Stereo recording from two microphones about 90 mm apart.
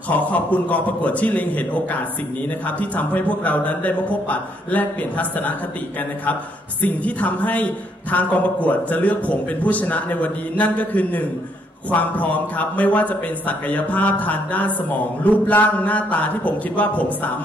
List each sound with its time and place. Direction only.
0.1 s a man's voice: 15° left (ahead or behind)
6.8 s a man's voice: 15° left (ahead or behind)